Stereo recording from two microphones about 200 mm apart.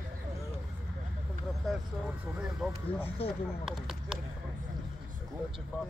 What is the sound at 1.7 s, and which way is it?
Speech, centre (ahead or behind).